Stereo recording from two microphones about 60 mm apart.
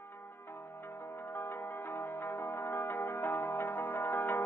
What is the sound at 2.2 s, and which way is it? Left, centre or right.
Music, left.